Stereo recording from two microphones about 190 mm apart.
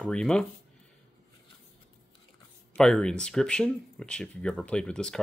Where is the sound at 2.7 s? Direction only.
5° left (ahead or behind).